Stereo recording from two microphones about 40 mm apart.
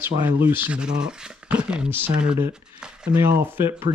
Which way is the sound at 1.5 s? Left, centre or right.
Right.